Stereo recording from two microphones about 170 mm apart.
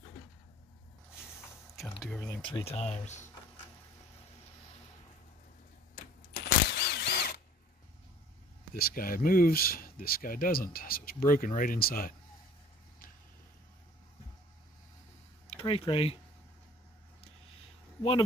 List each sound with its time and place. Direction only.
2.0 s speech: 5° left (ahead or behind)
2.4 s speech: 35° left (ahead or behind)
6.3 s a sound: 80° left
8.7 s speech: 60° left (ahead or behind)
15.4 s a sound: 35° left (ahead or behind)
15.9 s speech: 35° left (ahead or behind)